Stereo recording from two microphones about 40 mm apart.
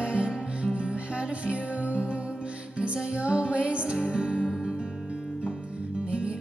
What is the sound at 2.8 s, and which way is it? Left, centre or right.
Music, right.